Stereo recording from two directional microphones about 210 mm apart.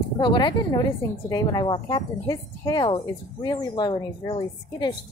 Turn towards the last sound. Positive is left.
turn(degrees=20)  # may be behind; listen again after turning